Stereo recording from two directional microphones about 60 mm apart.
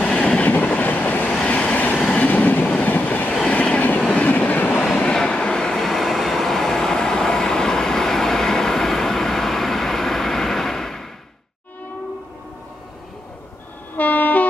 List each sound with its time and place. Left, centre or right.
0.0 s train: centre
2.0 s train: centre
2.2 s train: left
4.8 s train: centre
13.9 s train: left